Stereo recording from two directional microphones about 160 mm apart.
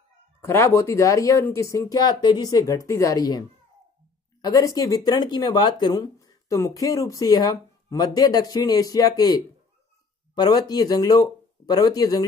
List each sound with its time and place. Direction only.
0.4 s speech: 15° left (ahead or behind)